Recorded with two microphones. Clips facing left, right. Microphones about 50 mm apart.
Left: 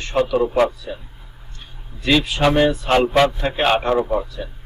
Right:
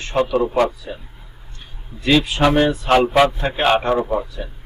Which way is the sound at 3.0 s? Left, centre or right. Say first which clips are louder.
Right 1 dB; centre.